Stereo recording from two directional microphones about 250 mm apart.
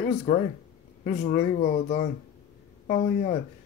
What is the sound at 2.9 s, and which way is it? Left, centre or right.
Speech, left.